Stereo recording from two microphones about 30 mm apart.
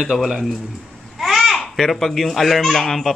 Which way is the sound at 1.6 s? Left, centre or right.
Centre.